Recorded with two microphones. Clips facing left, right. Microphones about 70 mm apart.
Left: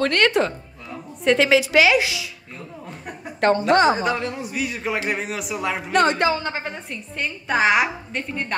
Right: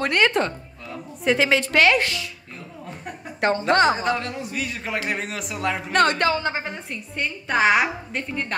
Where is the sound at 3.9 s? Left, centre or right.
Left.